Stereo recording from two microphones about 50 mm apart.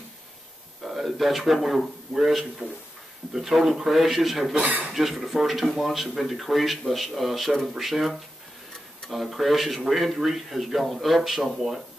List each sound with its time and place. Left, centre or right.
0.8 s speech: centre
4.6 s speech: right
4.9 s speech: centre